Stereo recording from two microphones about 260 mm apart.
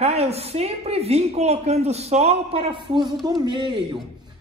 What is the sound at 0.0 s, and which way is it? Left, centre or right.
Speech, right.